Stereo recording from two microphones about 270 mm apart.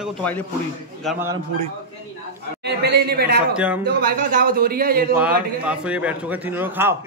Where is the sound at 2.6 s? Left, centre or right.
Right.